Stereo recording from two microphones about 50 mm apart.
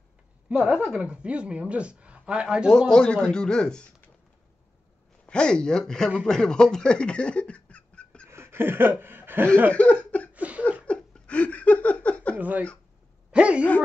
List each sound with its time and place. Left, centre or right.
0.7 s a woman's voice: right
2.9 s speech: centre
5.2 s speech: centre
8.3 s a sound: right
9.0 s speech: right
9.7 s cough: left
10.3 s a sound: right
10.9 s laughter: left
12.4 s speech: right
13.3 s a woman's voice: right